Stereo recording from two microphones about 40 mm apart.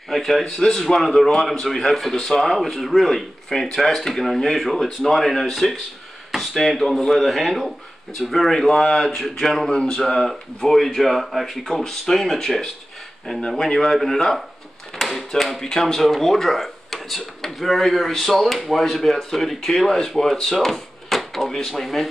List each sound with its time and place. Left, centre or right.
0.1 s a man's voice: centre
9.7 s a sound: centre
10.0 s a man's voice: centre
13.7 s a man's voice: centre